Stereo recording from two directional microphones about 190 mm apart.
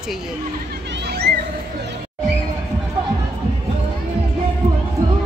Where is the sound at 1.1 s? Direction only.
55° right (ahead or behind).